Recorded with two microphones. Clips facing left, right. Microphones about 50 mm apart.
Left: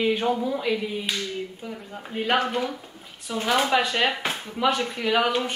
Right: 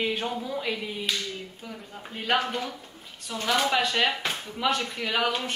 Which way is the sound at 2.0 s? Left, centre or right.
Centre.